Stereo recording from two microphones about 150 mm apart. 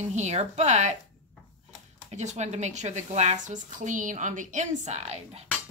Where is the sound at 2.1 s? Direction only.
50° right (ahead or behind).